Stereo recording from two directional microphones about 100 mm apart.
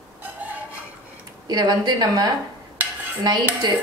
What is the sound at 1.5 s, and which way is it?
Speech, 40° right (ahead or behind).